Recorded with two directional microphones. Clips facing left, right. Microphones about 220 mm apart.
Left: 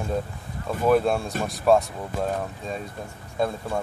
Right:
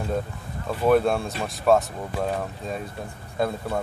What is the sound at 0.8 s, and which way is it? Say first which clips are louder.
Speech: right 1 dB; centre (ahead or behind).